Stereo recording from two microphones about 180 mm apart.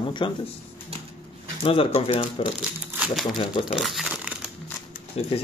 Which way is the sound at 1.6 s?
30° left (ahead or behind).